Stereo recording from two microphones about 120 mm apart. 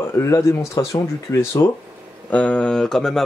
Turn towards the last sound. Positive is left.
turn(degrees=5)  # may be behind; listen again after turning